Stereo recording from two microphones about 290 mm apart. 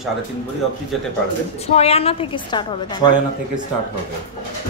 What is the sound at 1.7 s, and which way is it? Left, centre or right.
A woman's voice, left.